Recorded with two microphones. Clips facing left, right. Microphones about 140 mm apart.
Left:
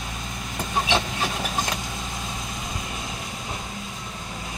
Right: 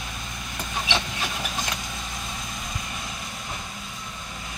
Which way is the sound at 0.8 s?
45° left (ahead or behind).